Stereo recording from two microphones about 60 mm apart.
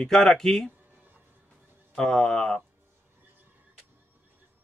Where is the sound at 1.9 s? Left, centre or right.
Centre.